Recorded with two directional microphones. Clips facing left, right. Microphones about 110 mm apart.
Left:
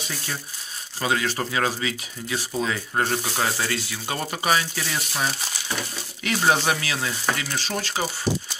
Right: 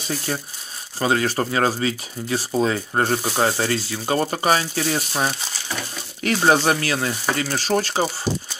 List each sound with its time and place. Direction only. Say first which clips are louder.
0.9 s speech: right 4 dB; 40° right (ahead or behind)